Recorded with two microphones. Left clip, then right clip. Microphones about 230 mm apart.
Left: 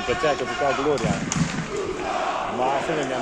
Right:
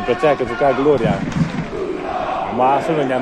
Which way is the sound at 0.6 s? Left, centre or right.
Right.